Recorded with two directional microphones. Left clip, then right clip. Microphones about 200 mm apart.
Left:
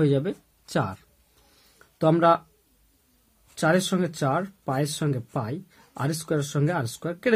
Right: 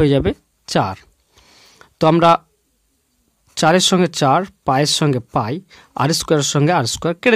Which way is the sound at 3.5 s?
45° right (ahead or behind).